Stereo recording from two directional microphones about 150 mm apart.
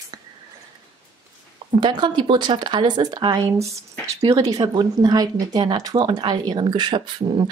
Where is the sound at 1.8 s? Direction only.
30° right (ahead or behind).